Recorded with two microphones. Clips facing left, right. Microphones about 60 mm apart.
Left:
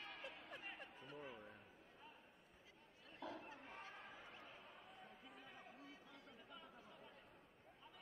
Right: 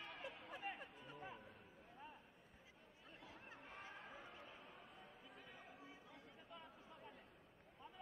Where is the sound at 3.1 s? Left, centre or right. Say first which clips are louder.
Left 10 dB; left.